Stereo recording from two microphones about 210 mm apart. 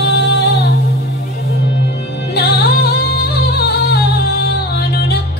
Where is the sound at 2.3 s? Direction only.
50° left (ahead or behind).